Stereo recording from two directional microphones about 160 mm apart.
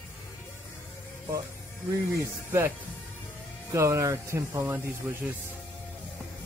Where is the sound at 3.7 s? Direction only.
20° right (ahead or behind).